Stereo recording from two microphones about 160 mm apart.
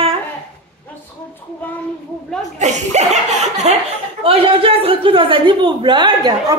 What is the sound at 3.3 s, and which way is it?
Chuckle, 45° right (ahead or behind).